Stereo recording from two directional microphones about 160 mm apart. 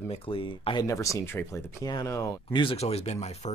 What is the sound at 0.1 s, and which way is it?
Speech, 35° left (ahead or behind).